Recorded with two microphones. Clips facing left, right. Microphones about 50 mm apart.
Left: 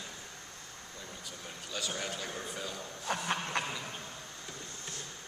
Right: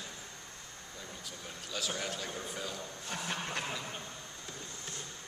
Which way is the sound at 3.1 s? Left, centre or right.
Left.